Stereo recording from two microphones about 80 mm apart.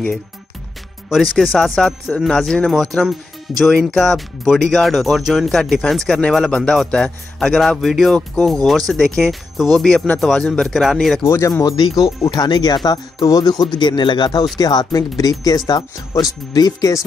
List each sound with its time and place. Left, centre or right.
1.1 s a man's voice: centre
11.2 s speech: left
11.7 s speech: left
14.6 s speech: left
16.5 s speech: left